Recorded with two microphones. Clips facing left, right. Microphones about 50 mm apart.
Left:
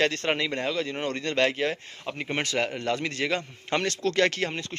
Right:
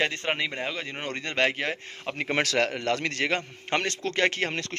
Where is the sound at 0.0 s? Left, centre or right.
Centre.